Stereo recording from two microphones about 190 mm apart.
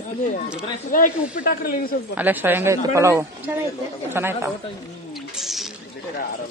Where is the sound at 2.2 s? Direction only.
10° right (ahead or behind).